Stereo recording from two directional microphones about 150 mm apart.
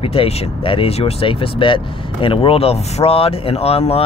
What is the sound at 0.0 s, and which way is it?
Speech, 40° left (ahead or behind).